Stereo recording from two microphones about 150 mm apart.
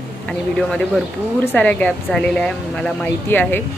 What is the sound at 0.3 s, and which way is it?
A woman's voice, 5° left (ahead or behind).